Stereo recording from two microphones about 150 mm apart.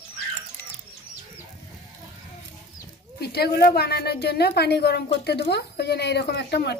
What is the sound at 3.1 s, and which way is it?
A woman's voice, 90° left.